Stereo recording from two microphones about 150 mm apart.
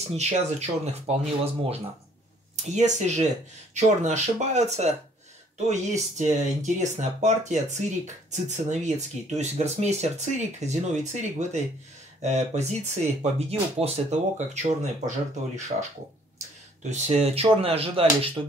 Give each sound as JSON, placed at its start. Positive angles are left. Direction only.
{"t": 0.1, "sound": "speech", "side_deg": -45}
{"t": 16.9, "sound": "speech", "side_deg": -45}